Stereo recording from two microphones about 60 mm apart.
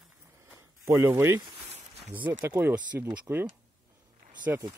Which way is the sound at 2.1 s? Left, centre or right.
Right.